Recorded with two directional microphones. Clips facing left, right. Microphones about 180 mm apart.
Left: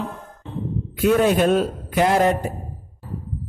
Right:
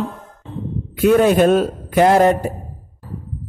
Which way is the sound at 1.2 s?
45° right (ahead or behind).